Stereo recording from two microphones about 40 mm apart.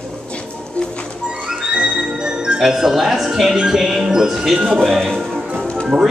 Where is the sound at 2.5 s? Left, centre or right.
Centre.